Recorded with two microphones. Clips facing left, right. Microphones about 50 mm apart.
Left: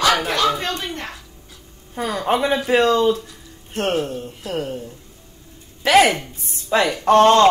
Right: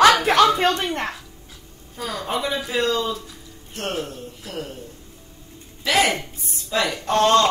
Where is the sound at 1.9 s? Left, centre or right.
Left.